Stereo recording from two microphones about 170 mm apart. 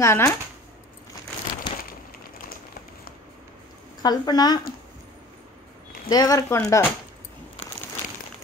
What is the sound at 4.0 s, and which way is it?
Speech, 25° left (ahead or behind).